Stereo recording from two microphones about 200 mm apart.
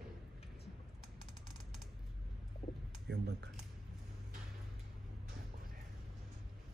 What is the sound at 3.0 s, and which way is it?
Typing, 55° right (ahead or behind).